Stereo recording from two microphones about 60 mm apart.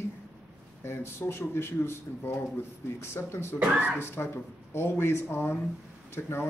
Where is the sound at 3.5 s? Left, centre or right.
Right.